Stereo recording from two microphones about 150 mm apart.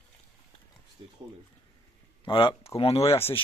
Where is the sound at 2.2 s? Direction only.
35° left (ahead or behind).